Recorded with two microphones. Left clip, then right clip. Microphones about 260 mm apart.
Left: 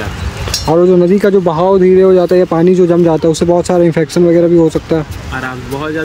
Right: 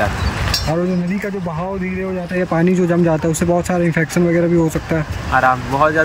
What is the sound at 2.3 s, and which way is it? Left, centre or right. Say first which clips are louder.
Speech: left 8 dB; centre.